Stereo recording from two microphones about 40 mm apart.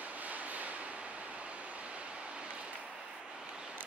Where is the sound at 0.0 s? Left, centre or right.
Right.